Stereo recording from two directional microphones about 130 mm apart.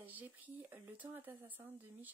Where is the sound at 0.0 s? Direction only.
15° right (ahead or behind).